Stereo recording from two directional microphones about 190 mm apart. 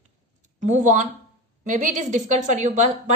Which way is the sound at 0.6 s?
40° right (ahead or behind).